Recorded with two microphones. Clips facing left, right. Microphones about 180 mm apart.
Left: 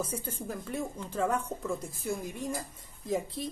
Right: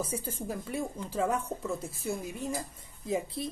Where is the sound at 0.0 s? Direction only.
10° right (ahead or behind).